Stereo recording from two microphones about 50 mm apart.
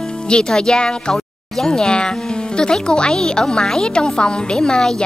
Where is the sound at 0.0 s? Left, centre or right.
Centre.